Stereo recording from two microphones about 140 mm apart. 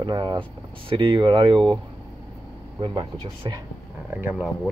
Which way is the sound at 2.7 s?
40° right (ahead or behind).